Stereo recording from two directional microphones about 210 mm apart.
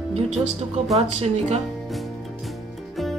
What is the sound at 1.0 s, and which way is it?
Speech, 30° right (ahead or behind).